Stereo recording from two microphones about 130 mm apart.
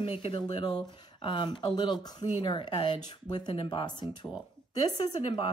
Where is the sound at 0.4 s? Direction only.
35° left (ahead or behind).